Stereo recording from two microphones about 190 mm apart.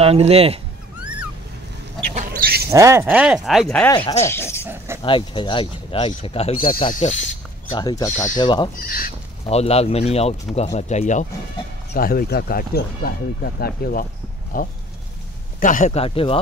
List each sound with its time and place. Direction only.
0.0 s speech: 30° right (ahead or behind)
0.9 s a sound: 5° right (ahead or behind)
2.1 s a sound: 50° right (ahead or behind)
2.7 s speech: 15° right (ahead or behind); by 3.9 s 5° left (ahead or behind)
3.9 s speech: 25° left (ahead or behind)
4.2 s speech: 15° left (ahead or behind)
4.6 s dog: 15° right (ahead or behind)
5.0 s speech: 25° left (ahead or behind)
7.7 s speech: 20° left (ahead or behind)
8.7 s speech: 50° left (ahead or behind)
9.5 s speech: 35° left (ahead or behind)
11.9 s speech: 50° left (ahead or behind); by 16.3 s 30° left (ahead or behind)